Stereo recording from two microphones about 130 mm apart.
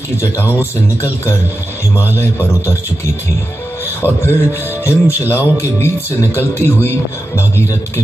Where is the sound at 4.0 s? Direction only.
15° left (ahead or behind).